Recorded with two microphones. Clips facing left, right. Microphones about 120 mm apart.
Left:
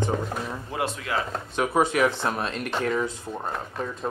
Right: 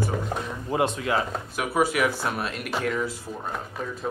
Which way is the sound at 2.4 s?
5° right (ahead or behind).